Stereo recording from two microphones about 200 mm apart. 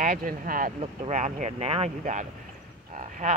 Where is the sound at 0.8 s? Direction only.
30° right (ahead or behind).